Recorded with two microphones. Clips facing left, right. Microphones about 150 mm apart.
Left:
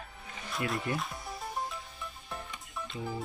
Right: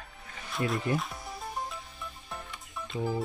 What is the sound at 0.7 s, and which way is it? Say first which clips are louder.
Music: right 4 dB; centre (ahead or behind).